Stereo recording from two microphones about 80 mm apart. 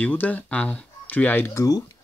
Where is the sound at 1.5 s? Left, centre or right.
Left.